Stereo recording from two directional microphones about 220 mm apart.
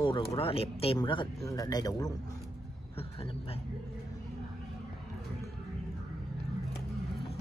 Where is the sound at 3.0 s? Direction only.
25° left (ahead or behind).